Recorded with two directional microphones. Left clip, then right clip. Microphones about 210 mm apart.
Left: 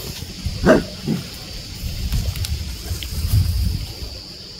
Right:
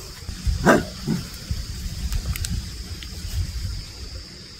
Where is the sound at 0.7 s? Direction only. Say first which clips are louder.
Left 3 dB; 25° right (ahead or behind).